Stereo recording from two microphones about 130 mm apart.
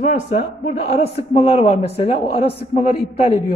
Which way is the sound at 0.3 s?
60° left (ahead or behind).